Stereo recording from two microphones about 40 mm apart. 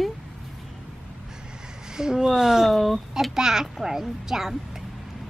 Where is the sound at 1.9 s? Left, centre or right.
Centre.